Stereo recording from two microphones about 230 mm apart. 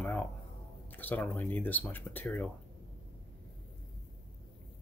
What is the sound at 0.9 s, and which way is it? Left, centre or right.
Speech, centre.